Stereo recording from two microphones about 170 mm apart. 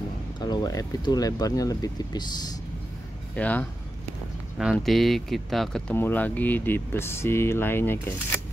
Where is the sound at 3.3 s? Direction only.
10° left (ahead or behind).